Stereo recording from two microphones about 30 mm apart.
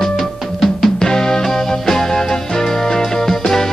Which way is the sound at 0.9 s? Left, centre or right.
Centre.